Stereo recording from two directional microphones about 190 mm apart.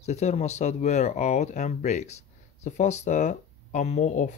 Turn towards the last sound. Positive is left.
turn(degrees=40)  # may be behind; listen again after turning